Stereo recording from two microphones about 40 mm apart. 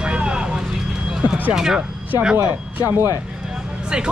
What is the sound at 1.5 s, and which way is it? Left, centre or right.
Speech, centre.